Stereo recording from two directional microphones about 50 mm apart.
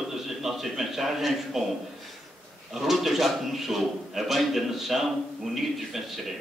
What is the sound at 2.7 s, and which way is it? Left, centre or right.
A man's voice, centre.